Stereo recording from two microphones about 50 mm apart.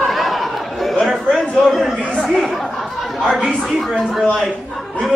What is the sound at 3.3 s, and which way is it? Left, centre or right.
Speech, centre.